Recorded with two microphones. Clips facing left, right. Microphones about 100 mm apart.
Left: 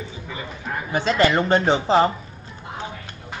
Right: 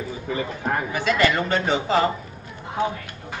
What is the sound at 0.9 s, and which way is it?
A man's voice, 25° left (ahead or behind).